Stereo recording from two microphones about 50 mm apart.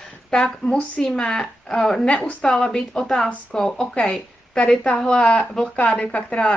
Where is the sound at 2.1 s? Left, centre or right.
Left.